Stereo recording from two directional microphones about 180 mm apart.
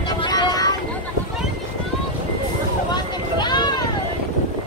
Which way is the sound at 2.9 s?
25° left (ahead or behind).